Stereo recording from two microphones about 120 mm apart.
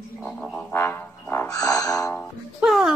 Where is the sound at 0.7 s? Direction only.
20° left (ahead or behind).